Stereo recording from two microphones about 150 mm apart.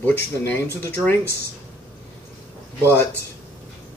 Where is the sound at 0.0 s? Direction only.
15° left (ahead or behind).